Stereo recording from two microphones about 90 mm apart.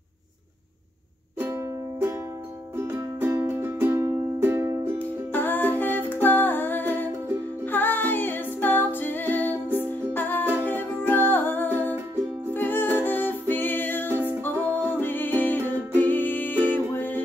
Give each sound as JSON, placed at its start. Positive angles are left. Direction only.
{"t": 1.5, "sound": "music", "side_deg": -30}
{"t": 4.9, "sound": "music", "side_deg": 20}
{"t": 14.0, "sound": "music", "side_deg": -25}
{"t": 14.4, "sound": "music", "side_deg": 20}